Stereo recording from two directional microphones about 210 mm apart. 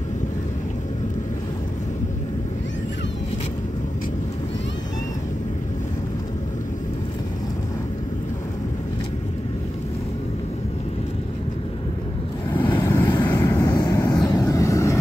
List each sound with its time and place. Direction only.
12.4 s vehicle: 20° left (ahead or behind)